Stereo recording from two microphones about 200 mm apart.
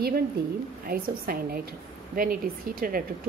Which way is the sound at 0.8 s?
45° right (ahead or behind).